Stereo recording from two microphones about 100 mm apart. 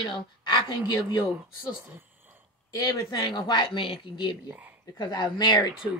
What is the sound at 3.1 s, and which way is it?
Speech, 50° left (ahead or behind).